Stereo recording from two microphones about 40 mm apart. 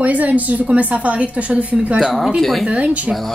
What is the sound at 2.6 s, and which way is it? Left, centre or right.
Speech, right.